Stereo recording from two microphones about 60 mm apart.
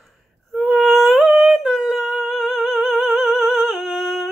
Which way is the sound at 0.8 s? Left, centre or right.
Centre.